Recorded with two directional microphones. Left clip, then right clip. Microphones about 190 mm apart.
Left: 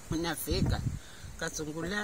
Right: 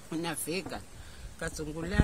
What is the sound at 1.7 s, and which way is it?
Speech, 5° right (ahead or behind).